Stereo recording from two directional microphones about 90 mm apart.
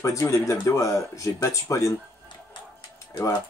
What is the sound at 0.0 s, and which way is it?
Speech, 35° left (ahead or behind).